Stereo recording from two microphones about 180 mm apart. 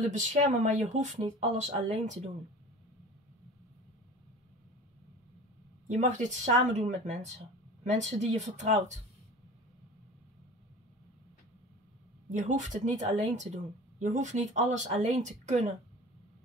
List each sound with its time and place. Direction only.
0.1 s speech: 45° right (ahead or behind)
5.9 s speech: 40° right (ahead or behind)
12.3 s a woman's voice: 45° right (ahead or behind)